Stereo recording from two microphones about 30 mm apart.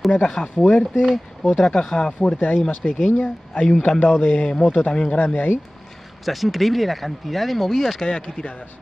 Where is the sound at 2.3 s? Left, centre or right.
Left.